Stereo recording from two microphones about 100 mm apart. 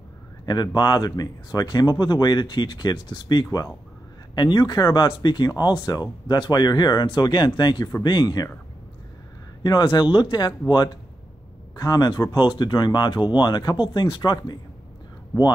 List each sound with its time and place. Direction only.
0.5 s speech: 45° left (ahead or behind)
9.6 s speech: 45° left (ahead or behind)
11.7 s speech: 40° left (ahead or behind)